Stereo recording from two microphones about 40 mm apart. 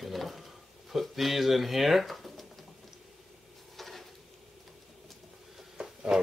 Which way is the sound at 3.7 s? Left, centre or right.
Centre.